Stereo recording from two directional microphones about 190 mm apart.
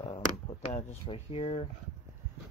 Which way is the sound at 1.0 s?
30° left (ahead or behind).